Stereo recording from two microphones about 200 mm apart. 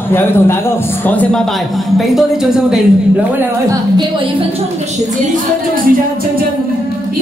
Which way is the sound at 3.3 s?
20° right (ahead or behind).